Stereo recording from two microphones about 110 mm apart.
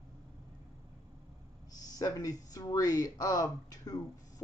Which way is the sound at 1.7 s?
35° left (ahead or behind).